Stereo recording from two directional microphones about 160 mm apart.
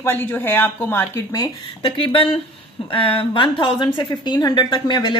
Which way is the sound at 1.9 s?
35° left (ahead or behind).